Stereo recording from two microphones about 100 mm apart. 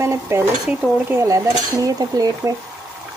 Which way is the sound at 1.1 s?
30° right (ahead or behind).